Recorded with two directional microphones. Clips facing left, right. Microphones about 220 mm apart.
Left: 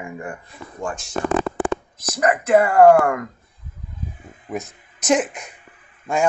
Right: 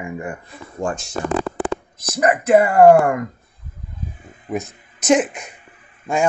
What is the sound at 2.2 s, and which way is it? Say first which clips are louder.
Speech: right 2 dB; 20° right (ahead or behind).